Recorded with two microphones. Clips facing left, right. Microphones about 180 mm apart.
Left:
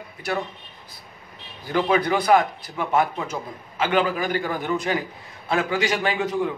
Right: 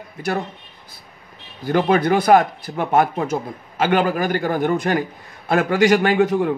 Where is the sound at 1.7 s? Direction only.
50° right (ahead or behind).